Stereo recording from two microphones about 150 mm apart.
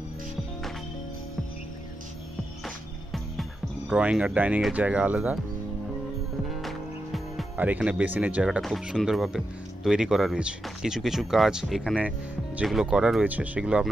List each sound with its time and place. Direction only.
2.6 s music: centre (ahead or behind)
3.9 s speech: 10° right (ahead or behind)
6.5 s music: centre (ahead or behind)
7.5 s speech: 10° right (ahead or behind)